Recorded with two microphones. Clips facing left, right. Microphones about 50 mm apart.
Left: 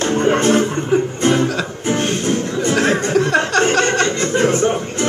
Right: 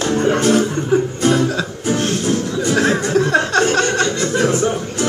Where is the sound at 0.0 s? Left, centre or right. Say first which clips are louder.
Left 1 dB; left.